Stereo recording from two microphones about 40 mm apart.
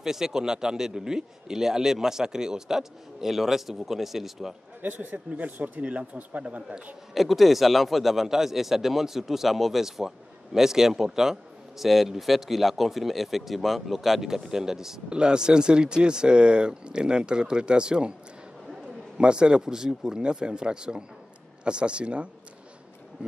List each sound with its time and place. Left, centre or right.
0.0 s speech: centre
4.8 s speech: right
7.2 s speech: centre; by 18.1 s right
19.1 s speech: right